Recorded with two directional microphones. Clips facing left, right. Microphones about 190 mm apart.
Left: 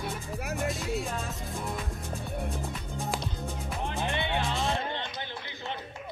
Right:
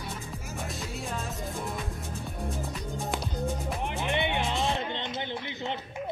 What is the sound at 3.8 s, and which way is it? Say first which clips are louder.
Music: right 2 dB; 20° right (ahead or behind).